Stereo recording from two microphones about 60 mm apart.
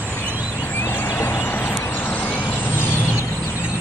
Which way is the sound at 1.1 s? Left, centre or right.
Left.